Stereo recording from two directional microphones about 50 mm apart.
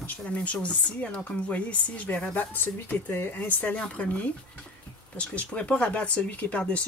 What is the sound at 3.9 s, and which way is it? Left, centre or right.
Speech, left.